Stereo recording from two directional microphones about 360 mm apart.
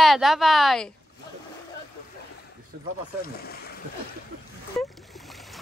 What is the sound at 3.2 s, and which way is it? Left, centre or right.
Speech, left.